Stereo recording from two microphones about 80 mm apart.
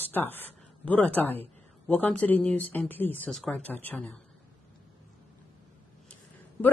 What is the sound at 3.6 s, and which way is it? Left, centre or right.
Speech, left.